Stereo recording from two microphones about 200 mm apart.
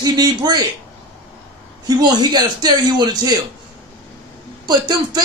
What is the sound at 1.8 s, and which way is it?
A man's voice, 20° right (ahead or behind).